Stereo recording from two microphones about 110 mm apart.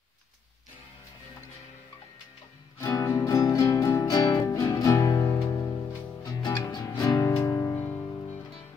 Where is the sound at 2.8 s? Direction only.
35° left (ahead or behind).